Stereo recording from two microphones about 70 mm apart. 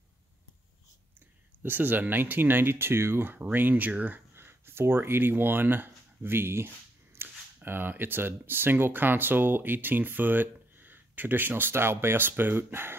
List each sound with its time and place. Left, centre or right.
1.6 s speech: right
4.3 s speech: right